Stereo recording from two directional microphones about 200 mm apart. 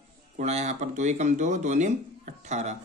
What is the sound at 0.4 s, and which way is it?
Speech, 35° right (ahead or behind).